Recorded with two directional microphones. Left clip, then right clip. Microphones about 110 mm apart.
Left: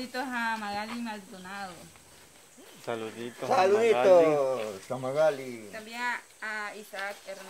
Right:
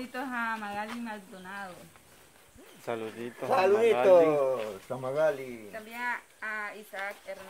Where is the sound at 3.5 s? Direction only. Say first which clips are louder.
Left 1 dB; 30° right (ahead or behind).